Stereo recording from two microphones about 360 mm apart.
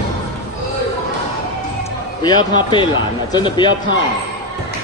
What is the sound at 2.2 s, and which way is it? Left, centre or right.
A man's voice, centre.